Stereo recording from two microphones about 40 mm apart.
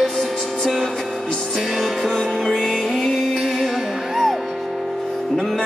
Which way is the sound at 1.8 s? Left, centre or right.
Centre.